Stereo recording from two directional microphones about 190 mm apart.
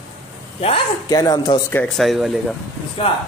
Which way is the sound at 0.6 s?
30° left (ahead or behind).